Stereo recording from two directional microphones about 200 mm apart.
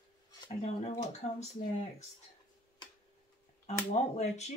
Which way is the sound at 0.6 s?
35° left (ahead or behind).